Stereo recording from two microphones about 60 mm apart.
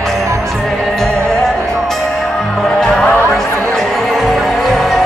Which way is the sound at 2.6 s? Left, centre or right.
Centre.